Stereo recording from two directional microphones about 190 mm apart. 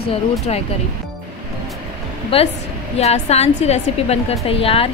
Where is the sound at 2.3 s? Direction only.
30° left (ahead or behind).